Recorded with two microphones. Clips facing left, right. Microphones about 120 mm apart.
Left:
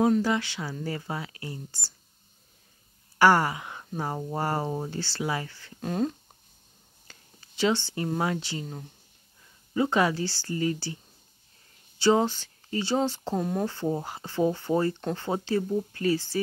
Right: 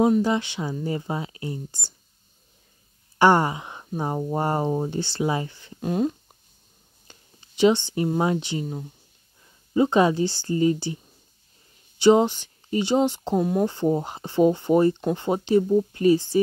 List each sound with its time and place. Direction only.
0.0 s speech: 20° right (ahead or behind)
3.2 s speech: 20° right (ahead or behind)
5.9 s speech: 10° right (ahead or behind)
7.1 s speech: 20° right (ahead or behind)
12.0 s speech: 20° right (ahead or behind)
13.4 s speech: 5° right (ahead or behind)
13.7 s speech: 20° right (ahead or behind)